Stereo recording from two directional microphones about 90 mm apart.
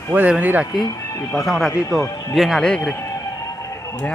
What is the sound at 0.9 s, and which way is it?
Speech, 35° left (ahead or behind).